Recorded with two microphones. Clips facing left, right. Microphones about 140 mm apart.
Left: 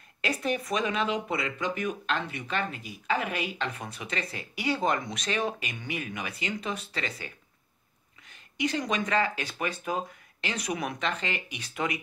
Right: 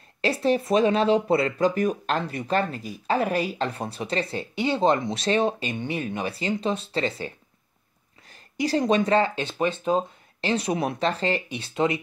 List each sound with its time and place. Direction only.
0.2 s speech: 30° right (ahead or behind)